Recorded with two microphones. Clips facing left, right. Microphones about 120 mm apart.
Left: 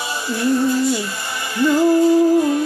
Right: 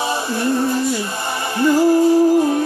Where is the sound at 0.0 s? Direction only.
25° right (ahead or behind).